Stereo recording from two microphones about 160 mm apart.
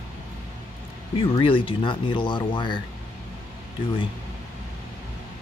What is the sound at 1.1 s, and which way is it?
Speech, 35° left (ahead or behind).